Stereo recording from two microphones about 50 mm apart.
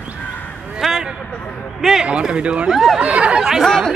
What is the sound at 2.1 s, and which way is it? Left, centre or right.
Speech, right.